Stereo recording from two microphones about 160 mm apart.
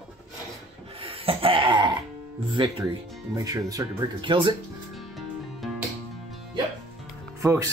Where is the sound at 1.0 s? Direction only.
35° right (ahead or behind).